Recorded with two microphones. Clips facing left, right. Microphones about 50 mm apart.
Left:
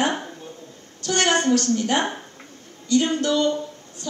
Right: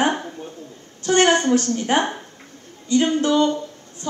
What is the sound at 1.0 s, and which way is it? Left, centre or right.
A woman's voice, right.